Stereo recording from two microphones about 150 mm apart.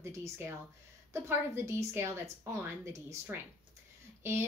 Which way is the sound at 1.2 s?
15° right (ahead or behind).